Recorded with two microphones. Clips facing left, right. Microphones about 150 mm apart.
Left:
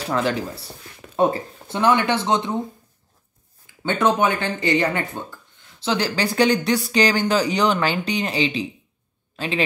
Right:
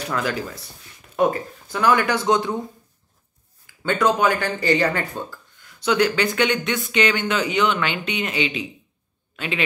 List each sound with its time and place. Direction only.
0.1 s speech: 30° left (ahead or behind)
3.6 s speech: 25° left (ahead or behind)